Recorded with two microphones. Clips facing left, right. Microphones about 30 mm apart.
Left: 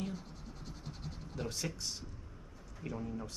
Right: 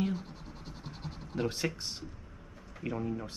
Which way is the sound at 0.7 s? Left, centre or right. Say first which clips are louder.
Right 3 dB; right.